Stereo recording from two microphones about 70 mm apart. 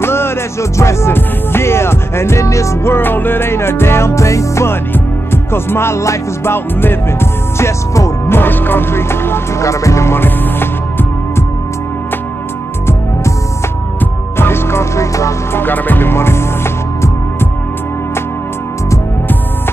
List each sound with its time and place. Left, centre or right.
0.0 s music: left
4.9 s music: left
8.3 s music: left
14.4 s music: left
15.5 s speech: left